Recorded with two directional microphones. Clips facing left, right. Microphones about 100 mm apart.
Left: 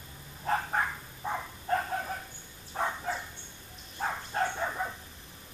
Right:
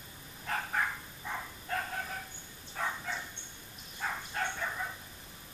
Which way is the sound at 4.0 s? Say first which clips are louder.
Left 5 dB; 30° left (ahead or behind).